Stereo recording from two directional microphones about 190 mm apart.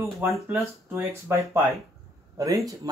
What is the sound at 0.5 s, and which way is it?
Speech, 15° right (ahead or behind).